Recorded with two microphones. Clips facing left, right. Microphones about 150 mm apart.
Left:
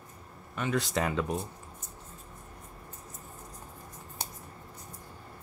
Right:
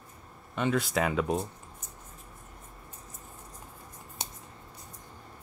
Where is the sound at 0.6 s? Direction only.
Centre (ahead or behind).